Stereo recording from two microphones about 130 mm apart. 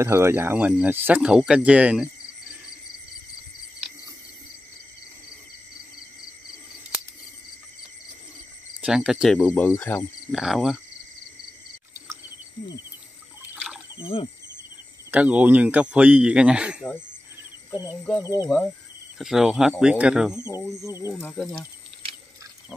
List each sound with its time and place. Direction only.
0.0 s speech: 20° right (ahead or behind)
8.8 s speech: 5° right (ahead or behind)
9.4 s speech: 15° left (ahead or behind)
10.3 s speech: centre (ahead or behind)
13.9 s speech: 45° left (ahead or behind)
15.0 s speech: 10° right (ahead or behind)
19.1 s speech: 5° right (ahead or behind)
20.8 s speech: 20° right (ahead or behind)
21.2 s speech: 10° left (ahead or behind)